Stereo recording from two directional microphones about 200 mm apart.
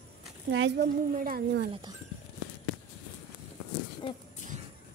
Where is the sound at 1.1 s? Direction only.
45° right (ahead or behind).